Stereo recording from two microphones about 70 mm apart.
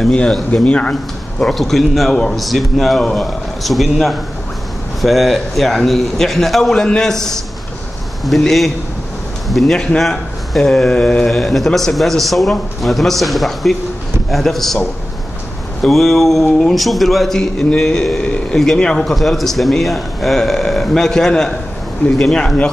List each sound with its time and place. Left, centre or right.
0.1 s speech: centre
1.4 s speech: centre
15.8 s speech: centre